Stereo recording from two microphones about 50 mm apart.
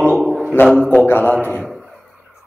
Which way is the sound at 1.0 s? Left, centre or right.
Left.